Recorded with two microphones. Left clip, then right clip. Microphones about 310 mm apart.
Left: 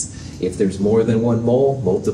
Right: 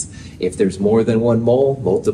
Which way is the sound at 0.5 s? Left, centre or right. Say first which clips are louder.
Right 1 dB; right.